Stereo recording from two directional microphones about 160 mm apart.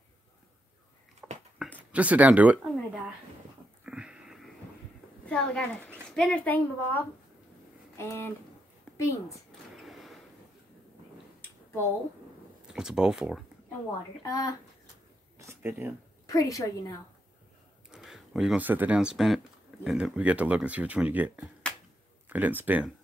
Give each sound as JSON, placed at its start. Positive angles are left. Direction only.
{"t": 1.2, "sound": "dog", "side_deg": -10}
{"t": 1.9, "sound": "speech", "side_deg": -10}
{"t": 3.8, "sound": "a sound", "side_deg": -5}
{"t": 5.2, "sound": "a woman's voice", "side_deg": 5}
{"t": 8.0, "sound": "a woman's voice", "side_deg": 15}
{"t": 9.8, "sound": "a sound", "side_deg": 0}
{"t": 11.4, "sound": "a sound", "side_deg": 15}
{"t": 12.6, "sound": "speech", "side_deg": -5}
{"t": 14.2, "sound": "a woman's voice", "side_deg": 20}
{"t": 15.3, "sound": "a sound", "side_deg": -15}
{"t": 16.3, "sound": "a woman's voice", "side_deg": 20}
{"t": 17.9, "sound": "speech", "side_deg": 0}